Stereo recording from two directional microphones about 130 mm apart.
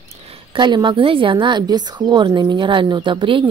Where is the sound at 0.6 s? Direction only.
35° right (ahead or behind).